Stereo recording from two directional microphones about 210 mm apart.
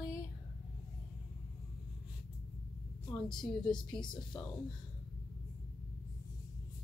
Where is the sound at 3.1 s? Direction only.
5° left (ahead or behind).